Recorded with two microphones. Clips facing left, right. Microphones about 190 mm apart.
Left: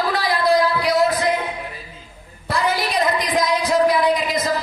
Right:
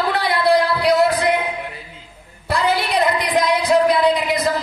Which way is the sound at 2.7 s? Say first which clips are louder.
Right 2 dB; 65° right (ahead or behind).